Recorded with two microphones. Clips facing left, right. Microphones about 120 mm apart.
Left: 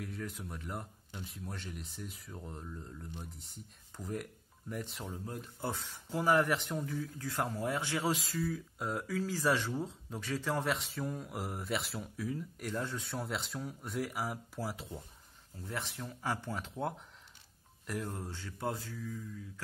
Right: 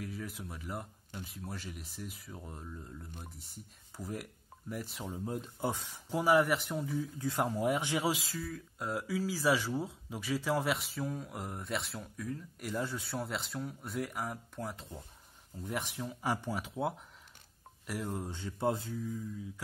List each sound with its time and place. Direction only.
0.0 s speech: 5° right (ahead or behind)
6.9 s speech: 15° right (ahead or behind)
8.2 s speech: centre (ahead or behind)
15.6 s speech: 15° right (ahead or behind)
18.2 s mantra: 20° right (ahead or behind)